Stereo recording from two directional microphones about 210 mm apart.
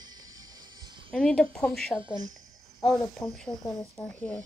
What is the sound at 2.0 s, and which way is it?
Speech, 20° right (ahead or behind).